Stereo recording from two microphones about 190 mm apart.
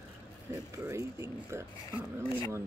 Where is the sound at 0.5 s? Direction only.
15° right (ahead or behind).